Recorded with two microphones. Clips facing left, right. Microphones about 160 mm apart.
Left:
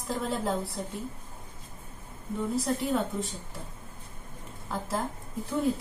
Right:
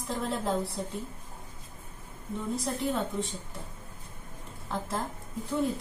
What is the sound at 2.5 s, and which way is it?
Speech, centre (ahead or behind).